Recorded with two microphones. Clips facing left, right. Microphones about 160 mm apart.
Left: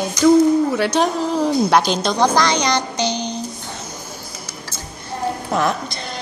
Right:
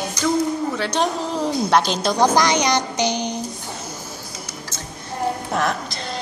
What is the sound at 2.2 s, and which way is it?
A child's voice, 15° right (ahead or behind).